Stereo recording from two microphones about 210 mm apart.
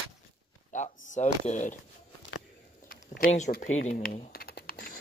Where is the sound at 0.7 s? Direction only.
35° left (ahead or behind).